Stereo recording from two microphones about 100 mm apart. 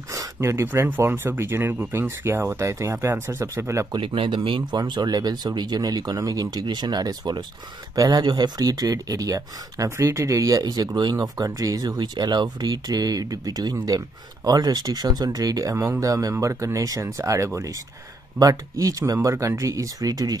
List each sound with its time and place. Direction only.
0.1 s speech: 30° right (ahead or behind)
3.9 s speech: 60° right (ahead or behind); by 20.3 s 40° right (ahead or behind)